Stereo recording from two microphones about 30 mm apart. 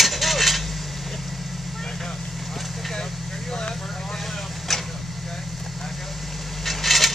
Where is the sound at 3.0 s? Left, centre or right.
Centre.